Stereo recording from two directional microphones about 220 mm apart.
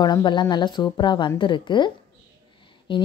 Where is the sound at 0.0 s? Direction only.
20° left (ahead or behind).